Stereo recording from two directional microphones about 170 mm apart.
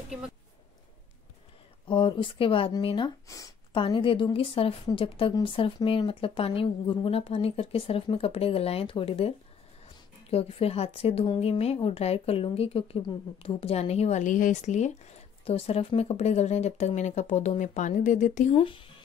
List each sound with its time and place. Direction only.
1.9 s a woman's voice: 30° left (ahead or behind)
3.3 s speech: 20° left (ahead or behind)
3.7 s a woman's voice: 30° left (ahead or behind)
10.3 s a woman's voice: 35° left (ahead or behind)
18.6 s speech: 30° left (ahead or behind)